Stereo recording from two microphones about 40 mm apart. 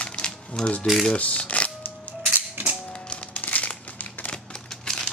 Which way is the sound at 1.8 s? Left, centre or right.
Left.